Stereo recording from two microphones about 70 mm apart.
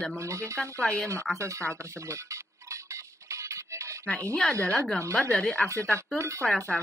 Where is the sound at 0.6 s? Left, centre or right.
Centre.